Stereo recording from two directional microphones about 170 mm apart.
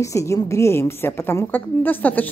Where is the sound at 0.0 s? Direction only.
20° left (ahead or behind).